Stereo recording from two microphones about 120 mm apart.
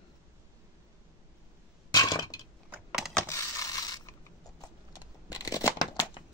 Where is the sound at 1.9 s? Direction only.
35° left (ahead or behind).